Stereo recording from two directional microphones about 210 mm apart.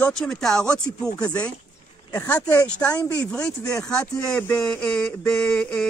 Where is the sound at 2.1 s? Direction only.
10° left (ahead or behind).